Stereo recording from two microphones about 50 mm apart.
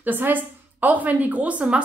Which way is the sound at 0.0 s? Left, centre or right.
Right.